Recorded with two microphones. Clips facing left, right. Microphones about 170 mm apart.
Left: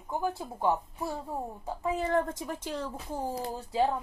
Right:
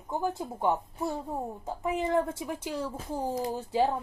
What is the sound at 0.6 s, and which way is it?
Speech, 20° right (ahead or behind).